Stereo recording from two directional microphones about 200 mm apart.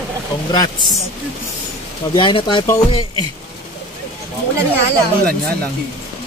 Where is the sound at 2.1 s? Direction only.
25° left (ahead or behind).